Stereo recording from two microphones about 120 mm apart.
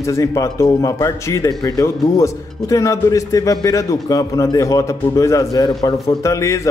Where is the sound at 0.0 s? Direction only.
25° left (ahead or behind).